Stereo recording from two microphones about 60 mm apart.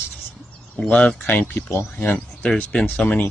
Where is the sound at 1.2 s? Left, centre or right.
Left.